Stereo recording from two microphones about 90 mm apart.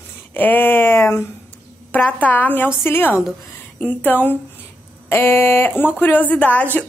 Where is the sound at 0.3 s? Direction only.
20° left (ahead or behind).